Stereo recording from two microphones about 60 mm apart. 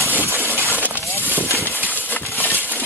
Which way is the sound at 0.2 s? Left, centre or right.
Right.